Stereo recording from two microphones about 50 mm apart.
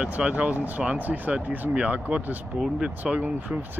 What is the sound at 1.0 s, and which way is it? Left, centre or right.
Speech, right.